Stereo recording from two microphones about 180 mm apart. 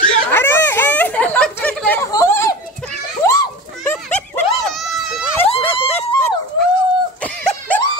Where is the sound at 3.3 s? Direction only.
15° left (ahead or behind).